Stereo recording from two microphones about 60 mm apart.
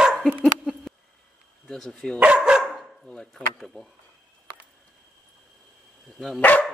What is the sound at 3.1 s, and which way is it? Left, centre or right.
Speech, centre.